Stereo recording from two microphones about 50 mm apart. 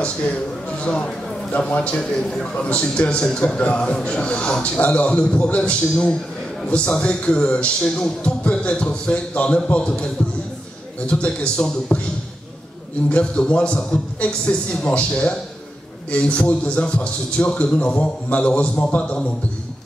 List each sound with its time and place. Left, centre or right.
0.0 s a man's voice: left
11.1 s a man's voice: left
13.1 s a man's voice: left